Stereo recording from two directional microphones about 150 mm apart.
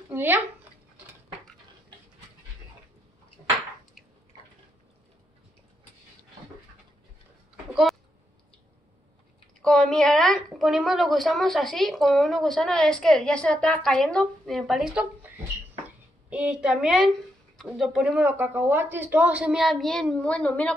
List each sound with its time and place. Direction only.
0.1 s speech: 15° right (ahead or behind)
9.6 s a woman's voice: 5° left (ahead or behind)
16.3 s a woman's voice: 5° right (ahead or behind); by 20.7 s 10° left (ahead or behind)